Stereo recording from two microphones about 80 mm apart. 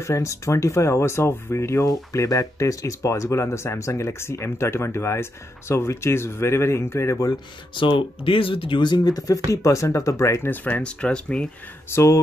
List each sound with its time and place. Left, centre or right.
0.0 s speech: left
7.7 s speech: left
9.5 s speech: left
10.5 s speech: centre
11.9 s speech: left